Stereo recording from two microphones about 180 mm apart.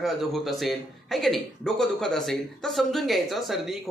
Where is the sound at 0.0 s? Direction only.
Centre (ahead or behind).